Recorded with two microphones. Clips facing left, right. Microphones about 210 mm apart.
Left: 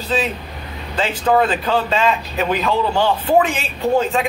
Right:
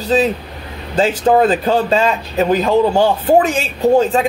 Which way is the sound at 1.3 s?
40° right (ahead or behind).